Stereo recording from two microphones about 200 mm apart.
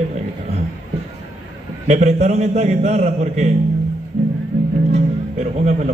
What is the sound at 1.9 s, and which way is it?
A man's voice, 35° right (ahead or behind).